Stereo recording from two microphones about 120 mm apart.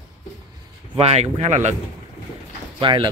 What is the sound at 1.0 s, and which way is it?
Speech, 60° right (ahead or behind).